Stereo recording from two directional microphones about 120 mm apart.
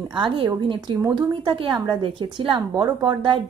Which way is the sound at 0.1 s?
40° right (ahead or behind).